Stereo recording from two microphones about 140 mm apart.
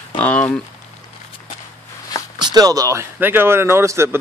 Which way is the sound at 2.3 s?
25° right (ahead or behind).